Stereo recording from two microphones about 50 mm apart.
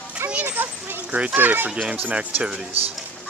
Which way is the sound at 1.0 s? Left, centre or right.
Right.